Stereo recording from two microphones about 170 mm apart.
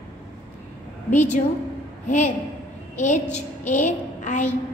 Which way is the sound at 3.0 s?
45° left (ahead or behind).